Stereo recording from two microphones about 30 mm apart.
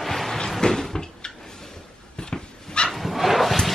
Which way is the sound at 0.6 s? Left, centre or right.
Centre.